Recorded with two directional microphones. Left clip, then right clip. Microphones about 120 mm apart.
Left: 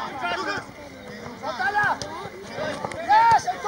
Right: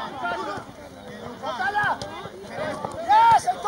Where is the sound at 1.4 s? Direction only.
30° right (ahead or behind).